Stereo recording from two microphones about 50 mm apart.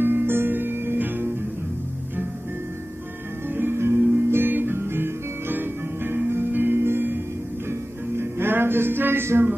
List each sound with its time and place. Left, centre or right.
0.0 s music: right
3.4 s music: right
4.1 s music: right
4.7 s music: right
8.2 s music: right